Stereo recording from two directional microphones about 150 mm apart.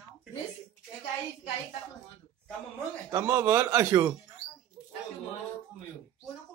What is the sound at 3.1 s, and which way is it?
Speech, 20° right (ahead or behind).